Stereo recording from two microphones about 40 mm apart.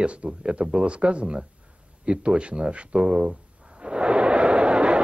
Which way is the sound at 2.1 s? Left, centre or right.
Right.